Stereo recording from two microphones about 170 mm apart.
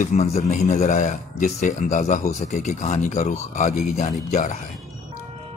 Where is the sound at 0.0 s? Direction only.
40° left (ahead or behind).